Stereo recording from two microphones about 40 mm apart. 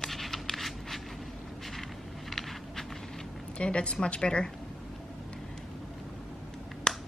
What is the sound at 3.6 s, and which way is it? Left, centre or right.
Speech, left.